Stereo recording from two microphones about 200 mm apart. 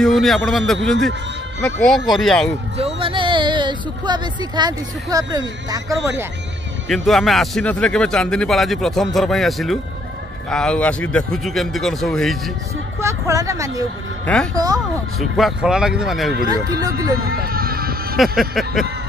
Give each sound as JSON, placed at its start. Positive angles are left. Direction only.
{"t": 0.0, "sound": "a man's voice", "side_deg": 0}
{"t": 2.8, "sound": "speech", "side_deg": -25}
{"t": 6.9, "sound": "a man's voice", "side_deg": 0}
{"t": 13.0, "sound": "speech", "side_deg": -15}
{"t": 14.2, "sound": "a man's voice", "side_deg": 5}
{"t": 14.5, "sound": "speech", "side_deg": -20}
{"t": 15.1, "sound": "a man's voice", "side_deg": 0}
{"t": 16.4, "sound": "speech", "side_deg": -20}
{"t": 17.2, "sound": "a sound", "side_deg": -50}
{"t": 18.1, "sound": "a man's voice", "side_deg": 0}